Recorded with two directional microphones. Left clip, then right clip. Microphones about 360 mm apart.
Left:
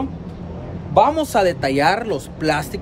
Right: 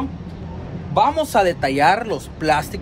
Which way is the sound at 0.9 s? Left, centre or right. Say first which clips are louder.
Left 1 dB; centre.